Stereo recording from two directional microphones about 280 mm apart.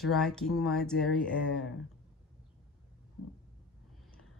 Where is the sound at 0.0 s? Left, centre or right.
Centre.